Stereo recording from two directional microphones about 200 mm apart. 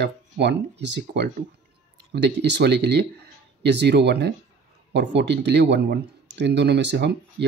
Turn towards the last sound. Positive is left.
turn(degrees=-60)  # may be behind; listen again after turning